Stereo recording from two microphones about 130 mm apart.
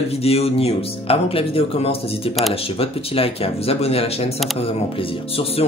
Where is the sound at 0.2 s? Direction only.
50° left (ahead or behind).